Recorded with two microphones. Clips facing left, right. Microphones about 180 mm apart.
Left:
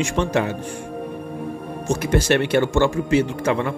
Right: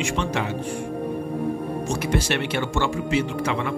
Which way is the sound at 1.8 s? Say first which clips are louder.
Left 7 dB; 45° left (ahead or behind).